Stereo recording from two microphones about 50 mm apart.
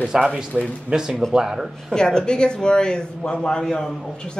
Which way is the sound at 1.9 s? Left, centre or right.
Centre.